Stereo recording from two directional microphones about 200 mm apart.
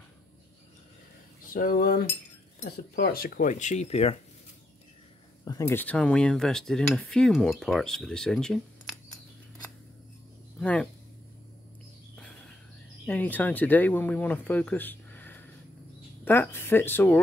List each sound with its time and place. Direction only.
1.5 s cutlery: 45° left (ahead or behind)
3.0 s speech: 50° left (ahead or behind); by 4.2 s 30° left (ahead or behind)
5.4 s speech: 15° left (ahead or behind)
10.6 s speech: 5° left (ahead or behind)
13.0 s speech: 10° left (ahead or behind)